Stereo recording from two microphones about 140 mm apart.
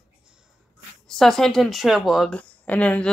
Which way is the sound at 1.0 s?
5° left (ahead or behind).